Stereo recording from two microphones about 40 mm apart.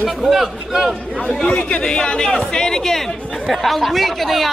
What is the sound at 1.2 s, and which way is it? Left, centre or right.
Speech, left.